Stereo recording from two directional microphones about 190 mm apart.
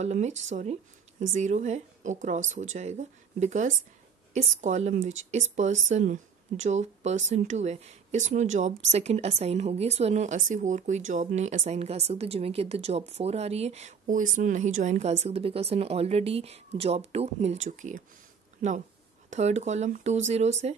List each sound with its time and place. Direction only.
0.0 s speech: 35° right (ahead or behind)
19.3 s speech: 35° right (ahead or behind)